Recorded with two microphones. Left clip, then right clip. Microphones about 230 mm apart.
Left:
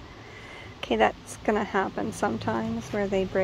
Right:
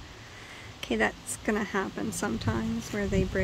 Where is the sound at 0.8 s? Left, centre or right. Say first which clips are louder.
Left 5 dB; centre.